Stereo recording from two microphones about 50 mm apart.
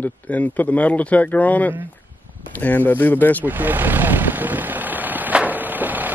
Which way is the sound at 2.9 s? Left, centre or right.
Left.